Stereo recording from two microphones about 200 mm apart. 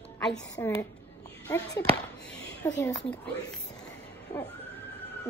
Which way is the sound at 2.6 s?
5° left (ahead or behind).